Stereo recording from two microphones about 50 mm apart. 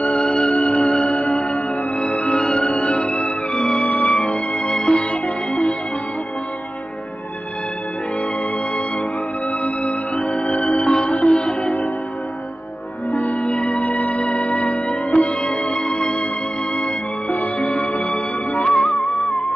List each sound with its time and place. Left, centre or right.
0.0 s music: left
9.8 s music: left
13.1 s music: left